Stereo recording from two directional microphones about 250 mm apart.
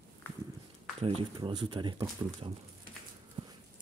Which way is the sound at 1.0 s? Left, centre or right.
Right.